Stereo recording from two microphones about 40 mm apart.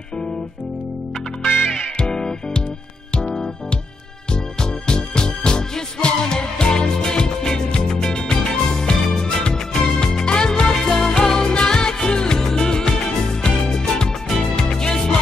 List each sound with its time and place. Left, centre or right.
1.7 s music: left
4.3 s music: left